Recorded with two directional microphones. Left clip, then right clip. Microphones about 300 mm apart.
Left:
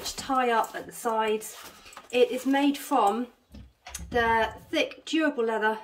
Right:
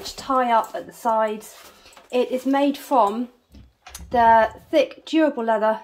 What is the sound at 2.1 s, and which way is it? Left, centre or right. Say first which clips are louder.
Speech: right 2 dB; centre.